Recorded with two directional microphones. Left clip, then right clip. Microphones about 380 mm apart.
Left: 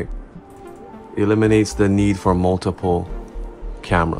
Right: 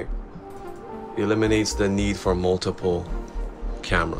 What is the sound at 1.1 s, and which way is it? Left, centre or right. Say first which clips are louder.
Speech: left 5 dB; centre.